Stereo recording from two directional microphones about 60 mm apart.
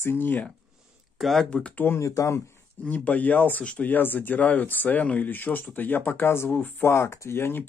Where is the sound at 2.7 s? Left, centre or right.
Left.